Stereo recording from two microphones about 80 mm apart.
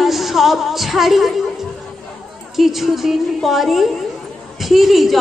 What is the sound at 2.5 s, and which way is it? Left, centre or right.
A woman's voice, centre.